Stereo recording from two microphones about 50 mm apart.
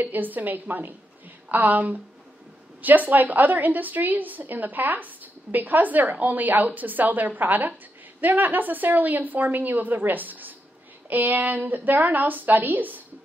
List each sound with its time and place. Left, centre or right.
0.0 s a woman's voice: right